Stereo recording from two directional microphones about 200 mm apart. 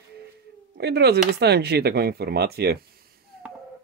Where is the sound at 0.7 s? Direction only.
55° right (ahead or behind).